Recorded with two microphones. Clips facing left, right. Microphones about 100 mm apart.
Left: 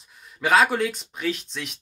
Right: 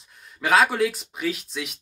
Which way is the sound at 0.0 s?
Centre (ahead or behind).